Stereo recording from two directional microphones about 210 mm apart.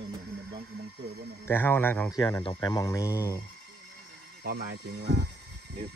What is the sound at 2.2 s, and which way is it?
Speech, 20° left (ahead or behind).